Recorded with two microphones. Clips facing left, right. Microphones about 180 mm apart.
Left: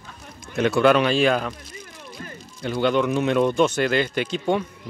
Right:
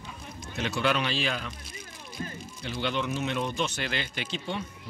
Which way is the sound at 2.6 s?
50° left (ahead or behind).